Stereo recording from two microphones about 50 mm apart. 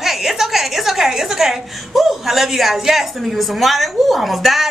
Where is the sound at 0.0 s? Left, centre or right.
Centre.